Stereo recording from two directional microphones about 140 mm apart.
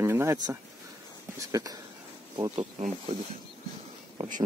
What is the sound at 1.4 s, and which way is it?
Speech, 25° right (ahead or behind).